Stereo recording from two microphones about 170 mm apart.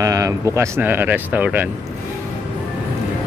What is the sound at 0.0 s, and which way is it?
Speech, 20° right (ahead or behind).